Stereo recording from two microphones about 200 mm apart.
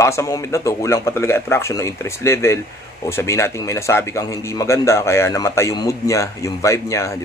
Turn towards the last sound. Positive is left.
turn(degrees=15)  # may be behind; listen again after turning